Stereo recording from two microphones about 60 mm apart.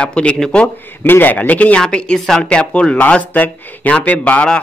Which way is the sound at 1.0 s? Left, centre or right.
Left.